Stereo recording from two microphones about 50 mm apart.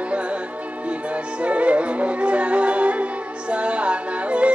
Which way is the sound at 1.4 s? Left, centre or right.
Right.